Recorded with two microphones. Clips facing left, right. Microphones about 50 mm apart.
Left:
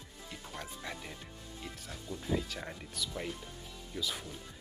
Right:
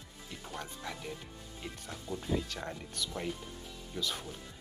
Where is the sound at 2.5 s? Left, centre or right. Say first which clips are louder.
Right 2 dB; centre.